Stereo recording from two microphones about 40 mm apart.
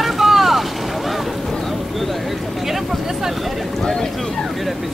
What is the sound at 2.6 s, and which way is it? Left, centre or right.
Vehicle, centre.